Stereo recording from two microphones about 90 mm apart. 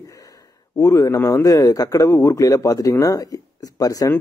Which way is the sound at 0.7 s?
35° left (ahead or behind).